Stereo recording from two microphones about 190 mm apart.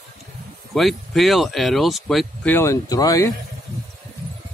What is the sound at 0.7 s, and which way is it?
Speech, centre (ahead or behind).